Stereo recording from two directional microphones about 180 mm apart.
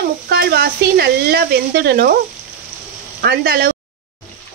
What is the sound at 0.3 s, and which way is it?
Speech, 60° right (ahead or behind).